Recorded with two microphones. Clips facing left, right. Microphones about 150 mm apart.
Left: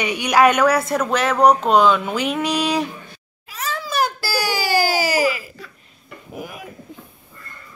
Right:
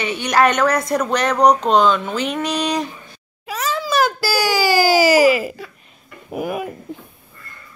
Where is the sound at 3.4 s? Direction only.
85° right.